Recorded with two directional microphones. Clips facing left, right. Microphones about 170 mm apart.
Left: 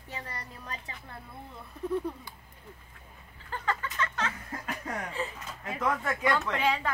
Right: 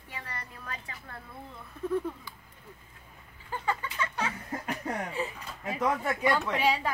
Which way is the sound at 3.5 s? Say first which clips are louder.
Right 1 dB; 15° right (ahead or behind).